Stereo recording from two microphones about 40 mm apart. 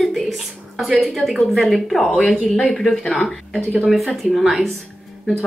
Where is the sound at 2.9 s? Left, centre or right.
Centre.